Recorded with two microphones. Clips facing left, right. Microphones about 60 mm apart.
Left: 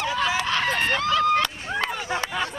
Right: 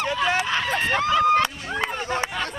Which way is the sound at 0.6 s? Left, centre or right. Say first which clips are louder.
Even; left.